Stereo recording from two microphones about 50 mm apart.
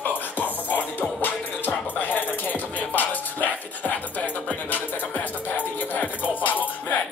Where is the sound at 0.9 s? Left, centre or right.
Left.